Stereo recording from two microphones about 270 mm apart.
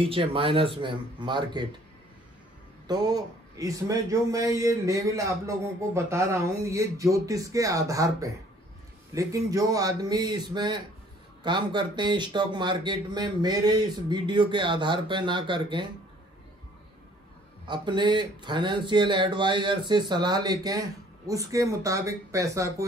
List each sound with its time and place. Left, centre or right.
0.0 s speech: centre
2.9 s a man's voice: centre
17.6 s a man's voice: centre